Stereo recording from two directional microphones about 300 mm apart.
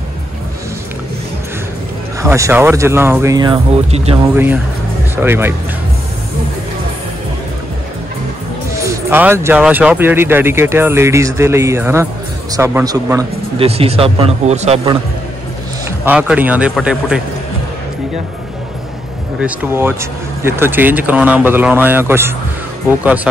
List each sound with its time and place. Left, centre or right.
2.2 s speech: centre
5.1 s speech: centre
8.8 s a man's voice: centre
16.1 s a man's voice: centre
19.4 s a man's voice: centre